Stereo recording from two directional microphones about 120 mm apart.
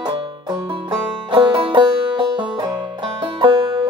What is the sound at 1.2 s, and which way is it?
Music, 40° right (ahead or behind).